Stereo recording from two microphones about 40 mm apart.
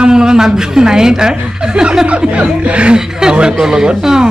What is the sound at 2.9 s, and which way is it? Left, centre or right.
Speech, centre.